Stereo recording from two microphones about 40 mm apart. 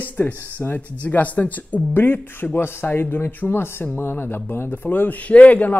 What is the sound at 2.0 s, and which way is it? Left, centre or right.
Speech, left.